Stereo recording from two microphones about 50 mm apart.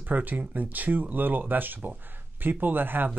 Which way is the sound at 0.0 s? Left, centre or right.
Right.